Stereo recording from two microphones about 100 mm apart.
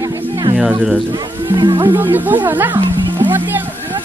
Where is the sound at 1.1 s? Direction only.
50° right (ahead or behind).